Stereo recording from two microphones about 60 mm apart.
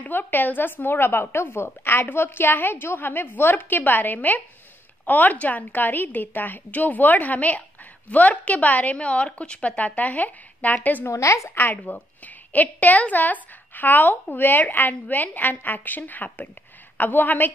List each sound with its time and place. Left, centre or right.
0.0 s a woman's voice: left
11.1 s a woman's voice: left
11.5 s a woman's voice: left